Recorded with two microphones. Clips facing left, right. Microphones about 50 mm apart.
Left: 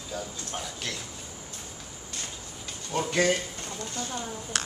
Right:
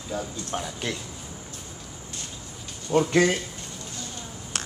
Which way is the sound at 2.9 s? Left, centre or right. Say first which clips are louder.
Right 8 dB; right.